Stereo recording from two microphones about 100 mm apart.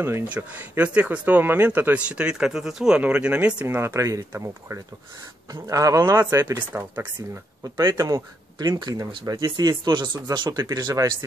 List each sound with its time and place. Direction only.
0.3 s speech: 15° right (ahead or behind)
3.6 s speech: 25° right (ahead or behind)
6.3 s speech: 25° right (ahead or behind)
7.6 s speech: 35° right (ahead or behind)